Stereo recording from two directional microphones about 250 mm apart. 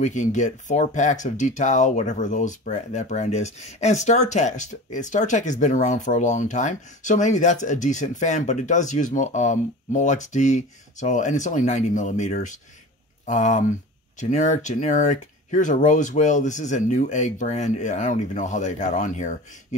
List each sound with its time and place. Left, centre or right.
0.0 s speech: left